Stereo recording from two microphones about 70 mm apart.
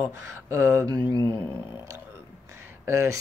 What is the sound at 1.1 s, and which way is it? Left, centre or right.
Speech, right.